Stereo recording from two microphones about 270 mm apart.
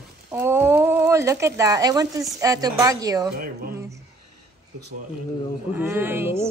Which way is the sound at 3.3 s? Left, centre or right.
Right.